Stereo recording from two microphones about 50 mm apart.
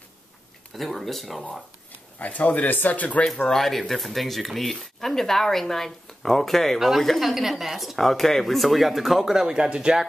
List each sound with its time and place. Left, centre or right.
0.7 s speech: centre
2.1 s speech: left
3.4 s speech: centre